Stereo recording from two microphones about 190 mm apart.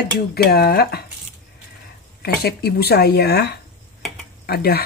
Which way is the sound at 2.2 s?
55° left (ahead or behind).